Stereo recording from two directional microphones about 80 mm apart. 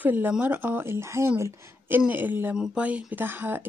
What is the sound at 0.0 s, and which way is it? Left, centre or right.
Speech, right.